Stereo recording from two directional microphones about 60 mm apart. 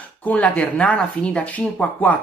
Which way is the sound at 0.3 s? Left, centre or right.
Left.